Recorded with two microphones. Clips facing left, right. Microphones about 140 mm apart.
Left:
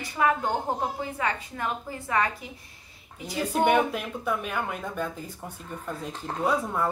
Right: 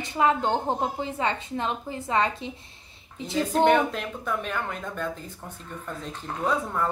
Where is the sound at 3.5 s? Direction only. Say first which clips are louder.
Right 1 dB; 10° left (ahead or behind).